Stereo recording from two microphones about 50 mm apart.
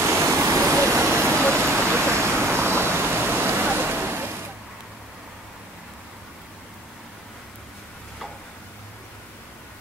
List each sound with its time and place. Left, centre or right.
0.0 s waterfall: right